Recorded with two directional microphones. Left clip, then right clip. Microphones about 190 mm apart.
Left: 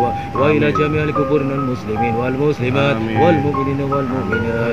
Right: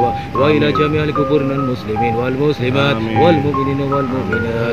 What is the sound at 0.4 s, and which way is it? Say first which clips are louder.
Speech: right 2 dB; centre (ahead or behind).